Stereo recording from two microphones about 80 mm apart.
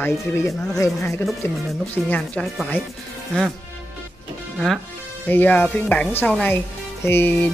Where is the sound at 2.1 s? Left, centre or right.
Centre.